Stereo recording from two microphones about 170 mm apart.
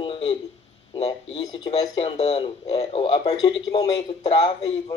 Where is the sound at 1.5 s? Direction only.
25° left (ahead or behind).